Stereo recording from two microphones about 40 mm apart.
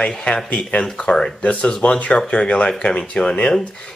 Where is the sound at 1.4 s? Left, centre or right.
Left.